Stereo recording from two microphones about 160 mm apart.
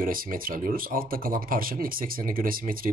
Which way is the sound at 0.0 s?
60° right (ahead or behind).